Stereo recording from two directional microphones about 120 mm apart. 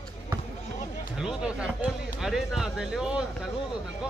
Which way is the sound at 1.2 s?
10° right (ahead or behind).